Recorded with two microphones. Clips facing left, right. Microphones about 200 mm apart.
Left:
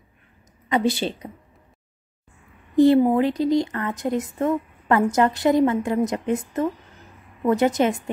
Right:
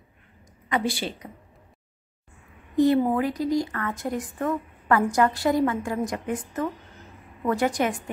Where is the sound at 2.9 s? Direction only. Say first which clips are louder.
Left 5 dB; 20° left (ahead or behind).